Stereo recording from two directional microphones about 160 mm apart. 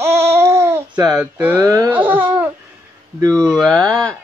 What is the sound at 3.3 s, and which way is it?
Speech, 5° left (ahead or behind).